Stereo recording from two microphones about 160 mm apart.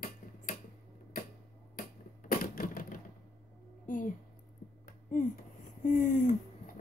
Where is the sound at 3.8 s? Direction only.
55° left (ahead or behind).